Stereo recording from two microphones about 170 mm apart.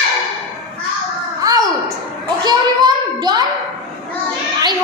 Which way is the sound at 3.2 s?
25° right (ahead or behind).